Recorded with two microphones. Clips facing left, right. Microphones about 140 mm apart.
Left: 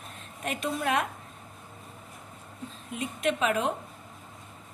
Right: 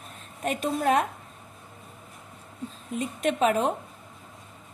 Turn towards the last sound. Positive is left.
turn(degrees=-40)  # may be behind; listen again after turning